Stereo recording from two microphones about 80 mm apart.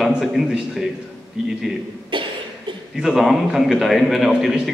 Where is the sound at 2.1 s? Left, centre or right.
Right.